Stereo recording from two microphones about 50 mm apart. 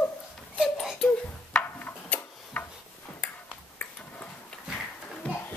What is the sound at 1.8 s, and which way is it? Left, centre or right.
Tick-tock, left.